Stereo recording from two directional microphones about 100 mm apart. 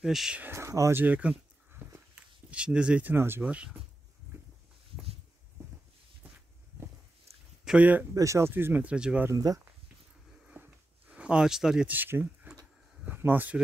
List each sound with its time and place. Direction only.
0.0 s speech: 5° right (ahead or behind)
0.4 s speech: 25° right (ahead or behind)
1.0 s speech: 15° right (ahead or behind)
1.8 s a sound: 20° right (ahead or behind)
2.5 s speech: 10° right (ahead or behind)
3.4 s speech: 10° right (ahead or behind)
7.6 s speech: 10° right (ahead or behind)
8.1 s speech: 30° right (ahead or behind); by 9.3 s 10° right (ahead or behind)
9.3 s speech: 40° right (ahead or behind)
10.4 s a sound: 15° right (ahead or behind)
11.9 s speech: 20° right (ahead or behind)
13.0 s a sound: 20° right (ahead or behind)